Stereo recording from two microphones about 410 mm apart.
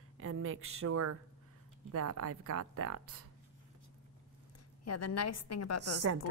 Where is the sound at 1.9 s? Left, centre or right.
Right.